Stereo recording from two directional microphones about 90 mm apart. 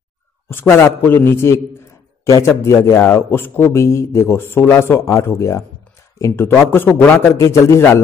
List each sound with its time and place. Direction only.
0.5 s a man's voice: 25° left (ahead or behind)
2.2 s a man's voice: 40° left (ahead or behind)